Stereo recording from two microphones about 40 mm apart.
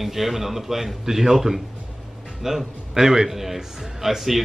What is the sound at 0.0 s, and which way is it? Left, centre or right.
A man's voice, centre.